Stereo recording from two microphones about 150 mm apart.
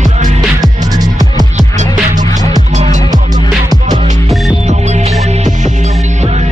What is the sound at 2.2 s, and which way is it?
Music, 55° right (ahead or behind).